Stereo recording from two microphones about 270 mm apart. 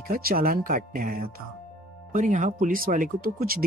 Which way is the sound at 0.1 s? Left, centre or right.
Right.